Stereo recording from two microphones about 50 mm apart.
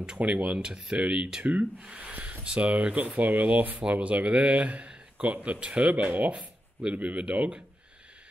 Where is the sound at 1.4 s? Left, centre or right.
Right.